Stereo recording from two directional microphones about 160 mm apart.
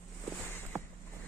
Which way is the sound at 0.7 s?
15° right (ahead or behind).